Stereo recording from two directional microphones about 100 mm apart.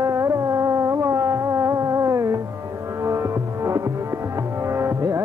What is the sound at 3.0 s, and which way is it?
Music, 30° right (ahead or behind).